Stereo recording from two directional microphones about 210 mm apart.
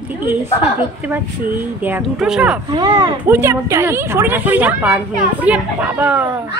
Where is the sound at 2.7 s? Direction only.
20° right (ahead or behind).